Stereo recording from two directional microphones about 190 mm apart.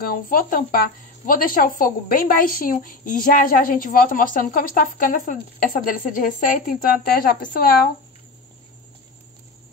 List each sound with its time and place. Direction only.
0.0 s speech: 50° left (ahead or behind)